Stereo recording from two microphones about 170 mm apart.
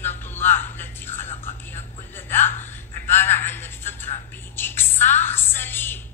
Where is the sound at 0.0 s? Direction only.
10° left (ahead or behind).